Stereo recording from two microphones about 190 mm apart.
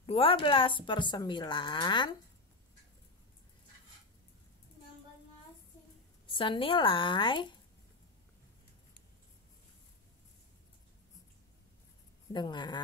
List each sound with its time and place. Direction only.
0.0 s a woman's voice: 30° left (ahead or behind)
6.2 s a woman's voice: 25° left (ahead or behind)
12.3 s a woman's voice: 25° left (ahead or behind)